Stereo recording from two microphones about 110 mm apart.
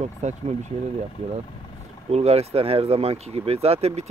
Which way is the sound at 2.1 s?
75° right (ahead or behind).